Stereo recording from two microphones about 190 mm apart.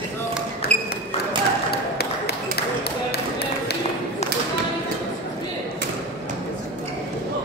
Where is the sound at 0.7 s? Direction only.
35° right (ahead or behind).